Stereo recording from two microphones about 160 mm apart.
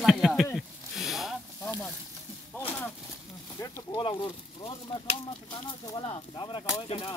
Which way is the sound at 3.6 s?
30° left (ahead or behind).